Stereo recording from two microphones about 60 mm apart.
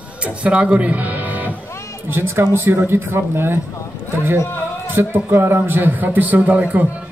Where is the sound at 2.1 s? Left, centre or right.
Right.